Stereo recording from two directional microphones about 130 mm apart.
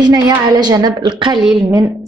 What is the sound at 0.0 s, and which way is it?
A woman's voice, 30° right (ahead or behind).